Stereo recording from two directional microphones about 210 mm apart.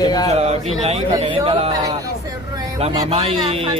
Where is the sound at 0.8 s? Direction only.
30° right (ahead or behind).